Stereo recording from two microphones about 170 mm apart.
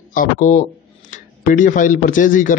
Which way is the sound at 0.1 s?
50° left (ahead or behind).